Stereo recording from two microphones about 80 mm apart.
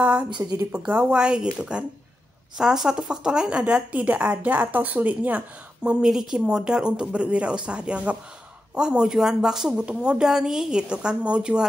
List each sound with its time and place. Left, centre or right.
0.0 s a woman's voice: centre
0.4 s a woman's voice: right
0.7 s a woman's voice: centre
5.9 s a woman's voice: centre